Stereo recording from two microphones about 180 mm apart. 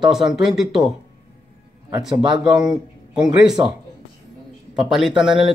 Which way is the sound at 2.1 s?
25° right (ahead or behind).